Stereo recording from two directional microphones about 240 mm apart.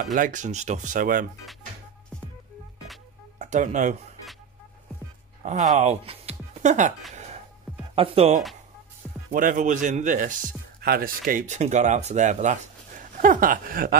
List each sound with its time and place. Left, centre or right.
0.0 s speech: right
3.3 s speech: right
5.8 s speech: right
7.9 s speech: right
9.3 s speech: right